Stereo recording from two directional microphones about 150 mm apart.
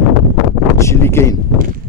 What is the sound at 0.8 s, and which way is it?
Speech, 20° left (ahead or behind).